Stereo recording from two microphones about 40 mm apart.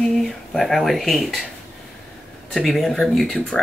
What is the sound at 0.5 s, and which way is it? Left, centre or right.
Speech, centre.